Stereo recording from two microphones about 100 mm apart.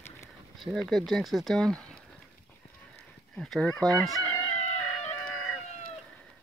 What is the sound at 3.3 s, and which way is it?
Chicken, 5° left (ahead or behind).